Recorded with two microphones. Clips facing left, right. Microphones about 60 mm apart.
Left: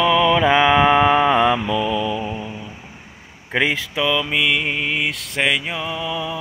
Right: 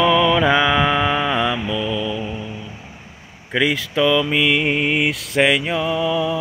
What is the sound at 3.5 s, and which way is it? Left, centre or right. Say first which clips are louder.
Speech: right 1 dB; left.